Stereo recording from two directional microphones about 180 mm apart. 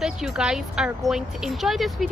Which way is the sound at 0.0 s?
5° right (ahead or behind).